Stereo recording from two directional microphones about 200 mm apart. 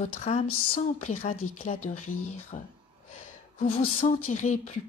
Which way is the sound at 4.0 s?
40° left (ahead or behind).